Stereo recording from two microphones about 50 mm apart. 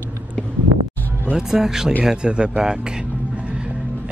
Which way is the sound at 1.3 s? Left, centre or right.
Centre.